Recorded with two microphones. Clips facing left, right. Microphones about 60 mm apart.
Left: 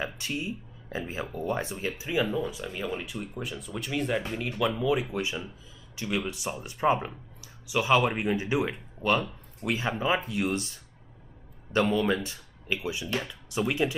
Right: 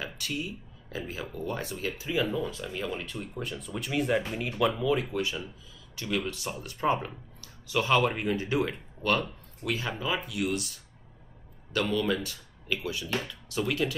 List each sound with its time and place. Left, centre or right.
0.0 s speech: left; by 5.0 s centre
5.1 s speech: left